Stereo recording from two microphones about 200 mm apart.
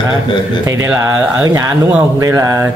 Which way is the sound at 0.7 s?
15° right (ahead or behind).